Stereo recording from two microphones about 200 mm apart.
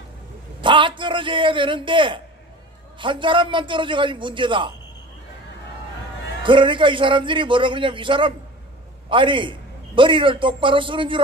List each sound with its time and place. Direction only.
0.6 s a man's voice: 25° right (ahead or behind)
6.4 s a man's voice: 25° right (ahead or behind)